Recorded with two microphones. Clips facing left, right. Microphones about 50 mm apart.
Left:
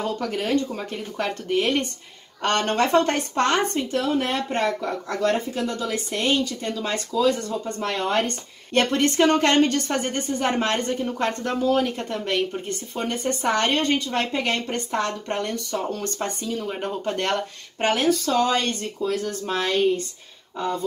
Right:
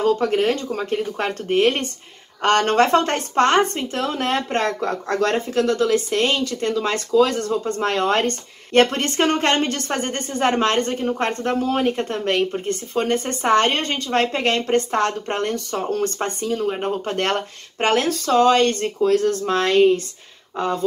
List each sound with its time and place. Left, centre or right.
0.2 s a woman's voice: right
5.0 s speech: right
8.7 s a woman's voice: right
17.9 s speech: right